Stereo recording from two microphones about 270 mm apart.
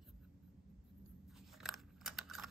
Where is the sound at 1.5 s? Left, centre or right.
Centre.